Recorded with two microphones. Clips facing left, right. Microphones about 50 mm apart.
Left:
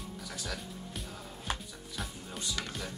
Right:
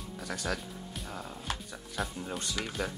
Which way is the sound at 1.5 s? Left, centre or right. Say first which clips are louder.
Left 4 dB; centre.